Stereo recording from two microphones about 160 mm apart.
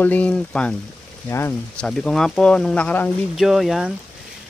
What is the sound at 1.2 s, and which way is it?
Speech, 15° left (ahead or behind).